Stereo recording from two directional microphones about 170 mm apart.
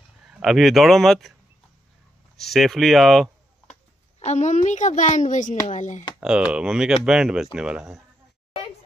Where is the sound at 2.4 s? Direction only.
Centre (ahead or behind).